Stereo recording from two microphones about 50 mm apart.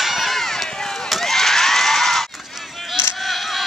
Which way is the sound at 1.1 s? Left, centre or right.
Centre.